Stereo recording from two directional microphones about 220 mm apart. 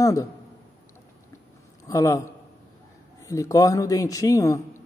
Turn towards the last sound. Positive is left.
turn(degrees=15)  # may be behind; listen again after turning